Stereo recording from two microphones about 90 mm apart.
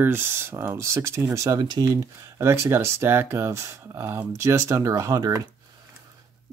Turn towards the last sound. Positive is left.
turn(degrees=-45)  # may be behind; listen again after turning